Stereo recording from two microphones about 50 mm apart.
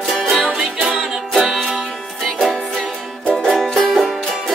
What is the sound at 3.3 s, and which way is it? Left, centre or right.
Music, centre.